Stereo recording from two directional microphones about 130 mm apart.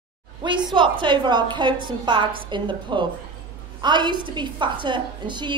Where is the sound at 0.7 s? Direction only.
40° right (ahead or behind).